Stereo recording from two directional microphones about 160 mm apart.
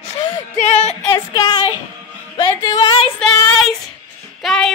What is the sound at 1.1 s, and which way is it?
Speech, 30° left (ahead or behind).